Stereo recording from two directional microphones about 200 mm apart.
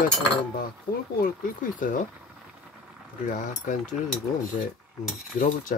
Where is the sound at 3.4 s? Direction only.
40° left (ahead or behind).